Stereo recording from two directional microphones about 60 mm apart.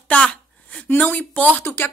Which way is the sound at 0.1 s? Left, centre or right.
Centre.